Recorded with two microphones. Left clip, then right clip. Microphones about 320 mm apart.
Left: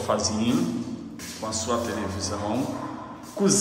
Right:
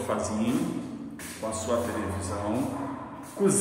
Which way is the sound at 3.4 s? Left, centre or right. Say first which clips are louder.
Left 2 dB; centre.